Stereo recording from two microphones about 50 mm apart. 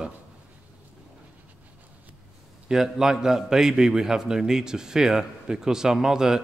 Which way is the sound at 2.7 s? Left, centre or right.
Centre.